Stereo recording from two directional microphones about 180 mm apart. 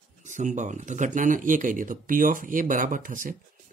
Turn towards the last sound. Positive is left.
turn(degrees=-50)  # may be behind; listen again after turning